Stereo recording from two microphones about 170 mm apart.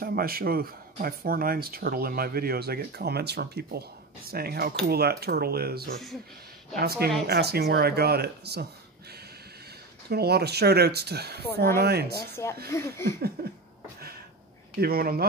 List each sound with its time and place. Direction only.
0.0 s speech: 60° right (ahead or behind)
10.0 s speech: 70° right (ahead or behind)
12.6 s speech: 15° left (ahead or behind)
14.8 s speech: 60° right (ahead or behind)